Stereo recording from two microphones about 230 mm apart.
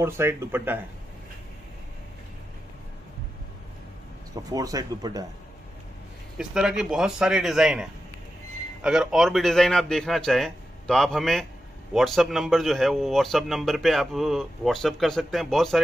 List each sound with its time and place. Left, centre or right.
0.0 s speech: centre
4.5 s speech: centre
6.3 s a man's voice: centre